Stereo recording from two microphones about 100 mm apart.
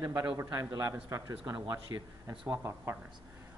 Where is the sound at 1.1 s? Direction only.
35° right (ahead or behind).